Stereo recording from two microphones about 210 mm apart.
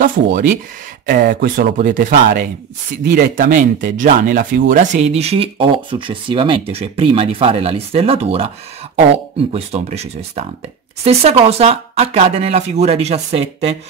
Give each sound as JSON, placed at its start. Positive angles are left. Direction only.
{"t": 0.0, "sound": "speech", "side_deg": -40}
{"t": 9.5, "sound": "speech", "side_deg": -30}